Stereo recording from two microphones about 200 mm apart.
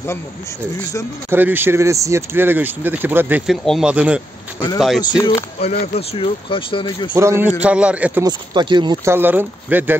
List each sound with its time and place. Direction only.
1.3 s speech: 10° right (ahead or behind)
5.1 s speech: 10° left (ahead or behind)
5.6 s speech: 30° left (ahead or behind)
7.2 s speech: 10° right (ahead or behind)
8.3 s speech: 20° right (ahead or behind)
9.1 s speech: 10° right (ahead or behind)